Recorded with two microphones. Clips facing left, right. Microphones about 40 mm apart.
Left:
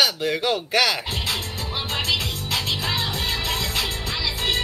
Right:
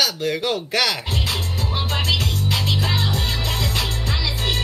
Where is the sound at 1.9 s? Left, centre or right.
Centre.